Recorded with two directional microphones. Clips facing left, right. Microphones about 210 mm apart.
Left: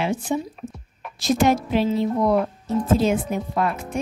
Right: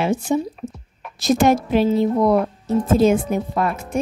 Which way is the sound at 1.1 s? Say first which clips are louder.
Right 3 dB; 45° right (ahead or behind).